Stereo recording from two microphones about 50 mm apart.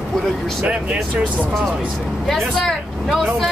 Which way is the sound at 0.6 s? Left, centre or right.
Right.